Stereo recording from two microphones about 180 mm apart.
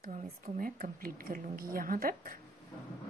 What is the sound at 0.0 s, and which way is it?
A woman's voice, 50° right (ahead or behind).